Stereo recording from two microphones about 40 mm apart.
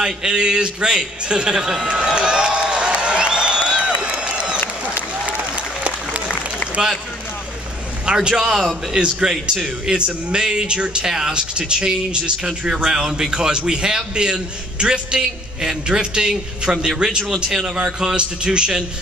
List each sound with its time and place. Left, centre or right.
0.0 s a sound: centre
6.8 s a man's voice: centre
8.0 s a man's voice: right
17.3 s a man's voice: centre